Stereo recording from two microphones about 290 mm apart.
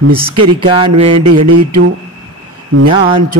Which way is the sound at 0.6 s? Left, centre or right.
Centre.